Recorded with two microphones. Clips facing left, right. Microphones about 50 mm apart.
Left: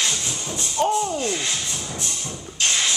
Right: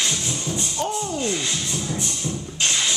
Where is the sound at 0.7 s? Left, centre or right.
Left.